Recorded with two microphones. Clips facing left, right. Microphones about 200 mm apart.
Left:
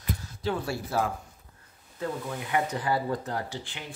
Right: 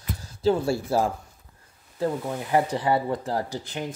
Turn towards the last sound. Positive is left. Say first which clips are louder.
# right 5 dB
turn(degrees=-40)  # may be behind; listen again after turning